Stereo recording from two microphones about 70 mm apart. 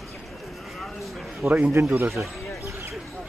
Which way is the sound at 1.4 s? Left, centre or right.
Right.